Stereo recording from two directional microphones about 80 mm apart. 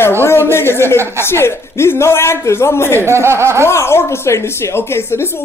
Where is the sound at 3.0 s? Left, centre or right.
Right.